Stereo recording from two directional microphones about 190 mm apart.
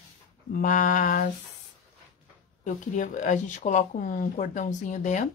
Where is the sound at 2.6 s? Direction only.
40° left (ahead or behind).